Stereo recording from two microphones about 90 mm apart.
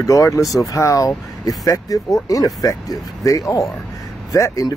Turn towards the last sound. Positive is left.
turn(degrees=40)  # may be behind; listen again after turning